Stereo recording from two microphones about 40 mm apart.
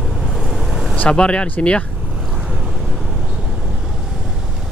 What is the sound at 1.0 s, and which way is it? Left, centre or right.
Speech, left.